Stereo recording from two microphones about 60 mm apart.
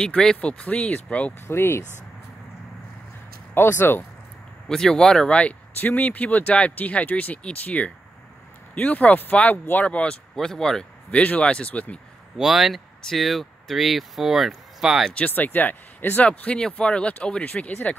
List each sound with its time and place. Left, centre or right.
0.0 s speech: centre
1.5 s speech: left
3.5 s speech: left
4.6 s speech: centre
11.1 s speech: left
12.4 s speech: centre
15.1 s speech: left
16.3 s speech: centre